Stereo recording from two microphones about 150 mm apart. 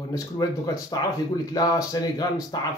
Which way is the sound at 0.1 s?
25° left (ahead or behind).